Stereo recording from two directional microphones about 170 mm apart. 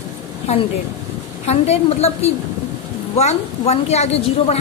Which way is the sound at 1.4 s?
40° left (ahead or behind).